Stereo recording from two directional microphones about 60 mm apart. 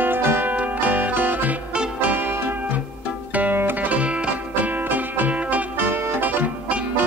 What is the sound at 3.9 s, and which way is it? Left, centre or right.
Music, centre.